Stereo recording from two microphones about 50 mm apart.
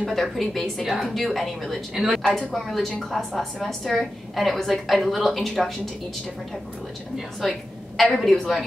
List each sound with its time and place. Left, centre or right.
0.0 s a woman's voice: centre
8.0 s a woman's voice: centre